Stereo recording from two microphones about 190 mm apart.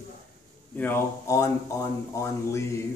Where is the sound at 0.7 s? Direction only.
10° left (ahead or behind).